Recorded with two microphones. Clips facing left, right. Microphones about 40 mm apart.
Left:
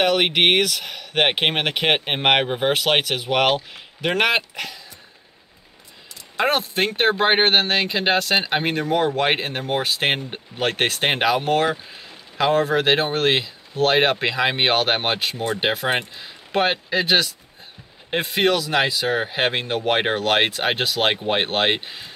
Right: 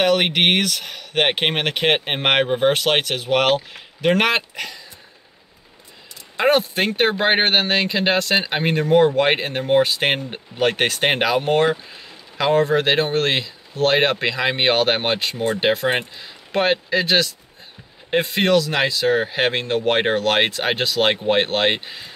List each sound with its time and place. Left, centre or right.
0.0 s speech: centre
6.3 s speech: centre
11.7 s speech: centre